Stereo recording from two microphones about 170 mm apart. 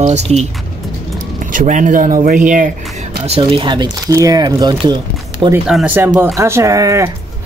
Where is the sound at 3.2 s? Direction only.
35° right (ahead or behind).